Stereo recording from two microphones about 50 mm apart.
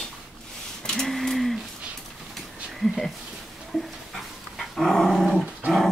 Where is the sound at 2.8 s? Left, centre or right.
Centre.